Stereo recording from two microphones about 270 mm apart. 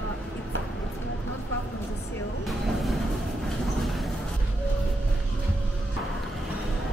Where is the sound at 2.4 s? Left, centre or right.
Centre.